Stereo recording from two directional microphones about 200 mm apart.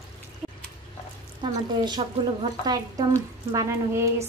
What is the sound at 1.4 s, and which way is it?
A woman's voice, 20° right (ahead or behind).